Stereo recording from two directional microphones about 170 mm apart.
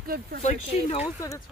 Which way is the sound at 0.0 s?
60° right (ahead or behind).